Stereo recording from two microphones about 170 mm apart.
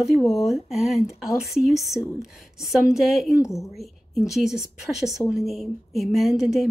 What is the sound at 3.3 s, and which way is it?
Speech, 20° left (ahead or behind).